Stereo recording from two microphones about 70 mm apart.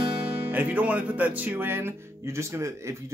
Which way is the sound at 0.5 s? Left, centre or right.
Right.